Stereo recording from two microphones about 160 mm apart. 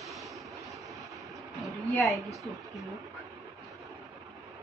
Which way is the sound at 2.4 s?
Centre (ahead or behind).